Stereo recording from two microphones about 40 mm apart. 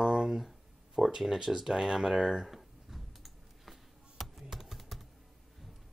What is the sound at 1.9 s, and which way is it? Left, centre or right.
Computer keyboard, centre.